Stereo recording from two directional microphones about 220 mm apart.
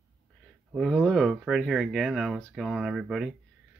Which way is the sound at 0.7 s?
Centre (ahead or behind).